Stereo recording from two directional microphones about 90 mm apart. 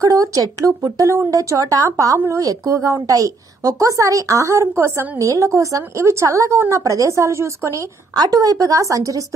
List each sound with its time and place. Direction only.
0.0 s a woman's voice: 40° right (ahead or behind)